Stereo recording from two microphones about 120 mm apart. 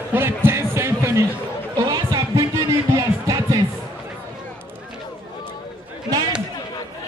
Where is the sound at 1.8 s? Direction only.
30° right (ahead or behind).